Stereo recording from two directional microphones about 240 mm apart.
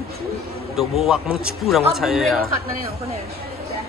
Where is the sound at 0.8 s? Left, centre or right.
Centre.